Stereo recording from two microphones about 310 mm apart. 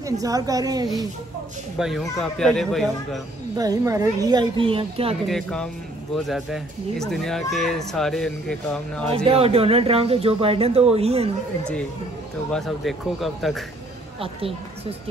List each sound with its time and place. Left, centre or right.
0.0 s speech: centre
1.8 s speech: centre
3.5 s speech: centre
5.3 s speech: centre
9.1 s speech: centre
12.4 s speech: centre
14.2 s speech: centre